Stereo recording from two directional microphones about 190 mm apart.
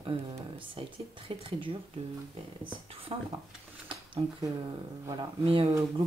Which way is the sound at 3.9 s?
25° right (ahead or behind).